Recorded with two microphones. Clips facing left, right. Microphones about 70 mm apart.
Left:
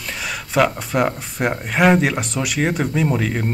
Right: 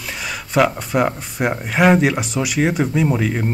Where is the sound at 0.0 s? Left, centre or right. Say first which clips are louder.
Even; centre.